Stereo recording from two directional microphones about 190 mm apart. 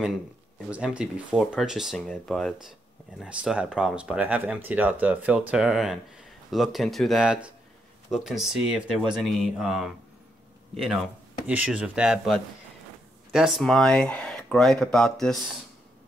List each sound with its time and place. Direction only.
0.7 s speech: 5° right (ahead or behind)
11.4 s speech: 5° right (ahead or behind)